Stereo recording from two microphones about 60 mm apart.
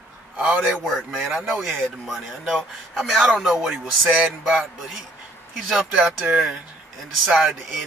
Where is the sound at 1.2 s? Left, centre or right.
Centre.